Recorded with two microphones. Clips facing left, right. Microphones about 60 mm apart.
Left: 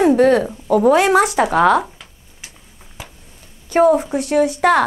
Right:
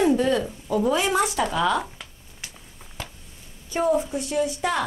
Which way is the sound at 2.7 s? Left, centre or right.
Centre.